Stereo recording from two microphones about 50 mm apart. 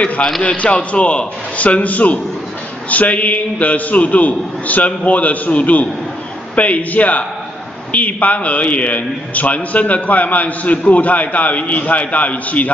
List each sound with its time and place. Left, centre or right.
0.0 s a man's voice: left